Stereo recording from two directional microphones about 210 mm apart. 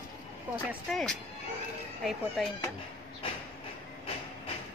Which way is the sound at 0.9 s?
5° left (ahead or behind).